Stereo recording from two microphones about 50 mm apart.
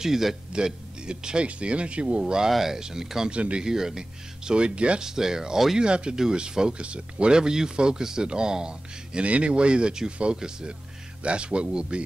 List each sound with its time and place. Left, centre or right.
0.0 s speech: centre
3.3 s speech: right
3.6 s speech: centre
5.0 s speech: centre